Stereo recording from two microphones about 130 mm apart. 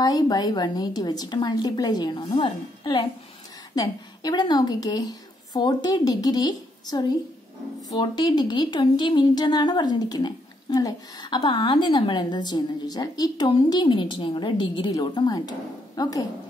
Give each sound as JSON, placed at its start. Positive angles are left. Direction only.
{"t": 0.0, "sound": "a woman's voice", "side_deg": 30}